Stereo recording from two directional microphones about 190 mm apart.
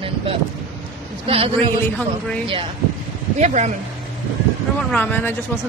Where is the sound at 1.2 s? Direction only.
30° right (ahead or behind).